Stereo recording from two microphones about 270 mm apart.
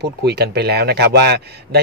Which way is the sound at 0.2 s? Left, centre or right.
Right.